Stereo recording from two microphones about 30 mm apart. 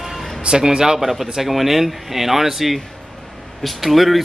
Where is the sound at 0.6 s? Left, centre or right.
Right.